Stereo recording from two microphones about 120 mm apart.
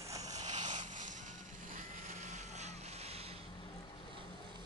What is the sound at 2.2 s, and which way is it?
Vehicle, 75° right (ahead or behind).